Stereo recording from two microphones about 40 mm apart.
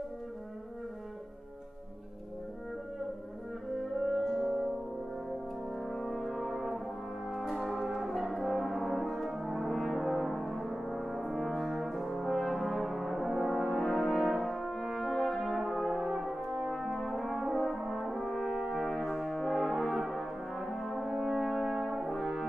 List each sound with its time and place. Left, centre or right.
4.0 s french horn: centre
5.8 s brass instrument: centre
14.4 s french horn: centre
15.0 s brass instrument: centre
16.4 s brass instrument: centre
16.7 s brass instrument: centre
22.2 s french horn: centre